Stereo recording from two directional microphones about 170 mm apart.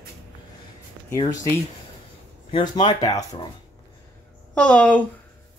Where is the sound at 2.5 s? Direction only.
25° left (ahead or behind).